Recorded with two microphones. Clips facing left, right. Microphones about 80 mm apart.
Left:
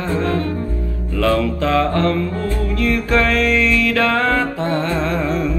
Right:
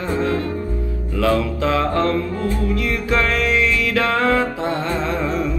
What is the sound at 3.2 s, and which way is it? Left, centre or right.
Music, right.